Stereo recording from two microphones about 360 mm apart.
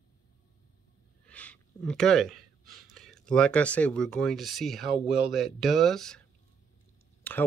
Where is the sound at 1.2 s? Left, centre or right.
Centre.